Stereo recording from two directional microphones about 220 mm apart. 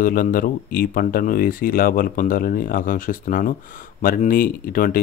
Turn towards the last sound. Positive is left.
turn(degrees=40)  # may be behind; listen again after turning